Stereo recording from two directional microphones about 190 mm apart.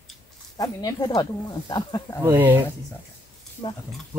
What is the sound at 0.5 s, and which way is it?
Speech, 20° left (ahead or behind).